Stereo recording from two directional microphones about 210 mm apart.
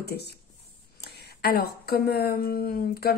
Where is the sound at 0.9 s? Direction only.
50° left (ahead or behind).